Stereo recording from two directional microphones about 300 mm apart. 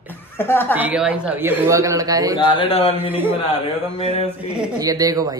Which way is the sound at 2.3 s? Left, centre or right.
Centre.